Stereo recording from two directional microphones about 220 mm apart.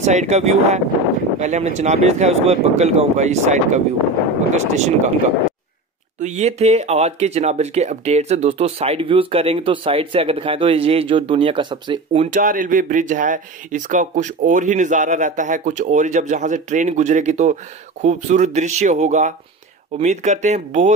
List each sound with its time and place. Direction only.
0.0 s speech: 30° right (ahead or behind)
6.1 s speech: 30° right (ahead or behind)